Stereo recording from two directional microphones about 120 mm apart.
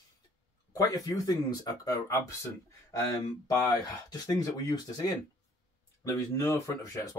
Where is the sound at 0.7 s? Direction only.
30° left (ahead or behind).